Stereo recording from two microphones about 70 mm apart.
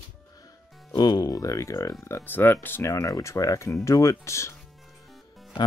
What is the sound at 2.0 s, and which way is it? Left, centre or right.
Speech, left.